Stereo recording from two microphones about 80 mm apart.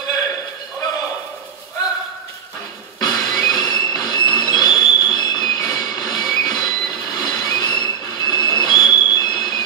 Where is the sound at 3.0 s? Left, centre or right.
Left.